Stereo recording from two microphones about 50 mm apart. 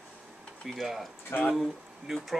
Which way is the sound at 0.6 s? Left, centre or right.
Centre.